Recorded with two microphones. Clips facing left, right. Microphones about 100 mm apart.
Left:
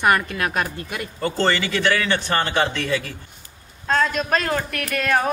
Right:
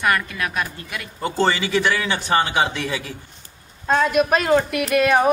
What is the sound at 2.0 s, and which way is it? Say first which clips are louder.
A woman's voice: right 2 dB; 15° right (ahead or behind).